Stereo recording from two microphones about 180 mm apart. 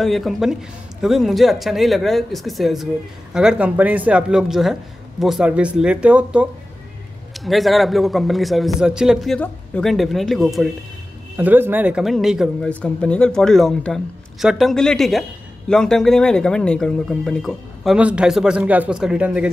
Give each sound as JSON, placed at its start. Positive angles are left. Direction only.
{"t": 0.0, "sound": "speech", "side_deg": 0}
{"t": 11.3, "sound": "speech", "side_deg": -10}